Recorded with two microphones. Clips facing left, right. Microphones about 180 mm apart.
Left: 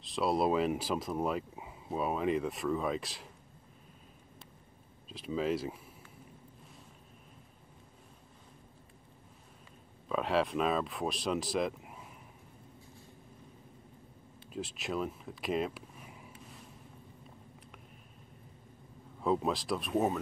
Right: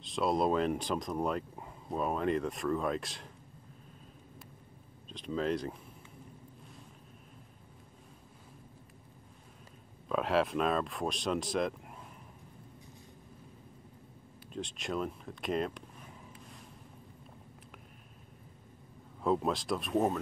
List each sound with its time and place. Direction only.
0.0 s speech: centre (ahead or behind)
5.1 s speech: 5° left (ahead or behind)
10.0 s speech: centre (ahead or behind)
14.5 s a sound: 5° left (ahead or behind)
19.2 s speech: centre (ahead or behind)